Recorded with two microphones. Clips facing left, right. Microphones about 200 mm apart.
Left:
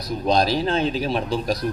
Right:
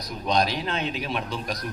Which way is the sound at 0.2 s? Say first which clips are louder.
Left 5 dB; 30° left (ahead or behind).